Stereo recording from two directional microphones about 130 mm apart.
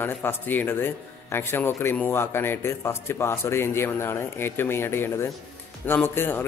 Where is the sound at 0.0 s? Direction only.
15° left (ahead or behind).